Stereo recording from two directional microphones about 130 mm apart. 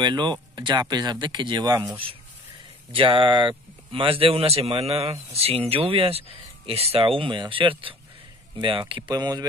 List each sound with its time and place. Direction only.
0.0 s speech: 35° right (ahead or behind)
2.9 s speech: 40° right (ahead or behind)